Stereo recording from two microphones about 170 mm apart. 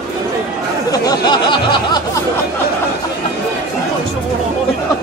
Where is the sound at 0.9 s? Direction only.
20° left (ahead or behind).